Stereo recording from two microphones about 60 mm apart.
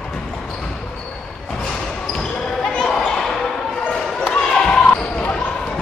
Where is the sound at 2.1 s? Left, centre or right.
Centre.